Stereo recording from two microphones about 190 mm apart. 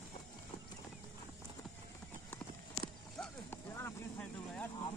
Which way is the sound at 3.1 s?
10° left (ahead or behind).